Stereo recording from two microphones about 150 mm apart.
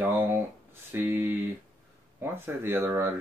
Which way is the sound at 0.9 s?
15° right (ahead or behind).